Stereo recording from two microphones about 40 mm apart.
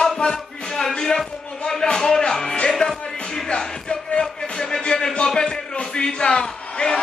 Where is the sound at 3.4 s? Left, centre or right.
Left.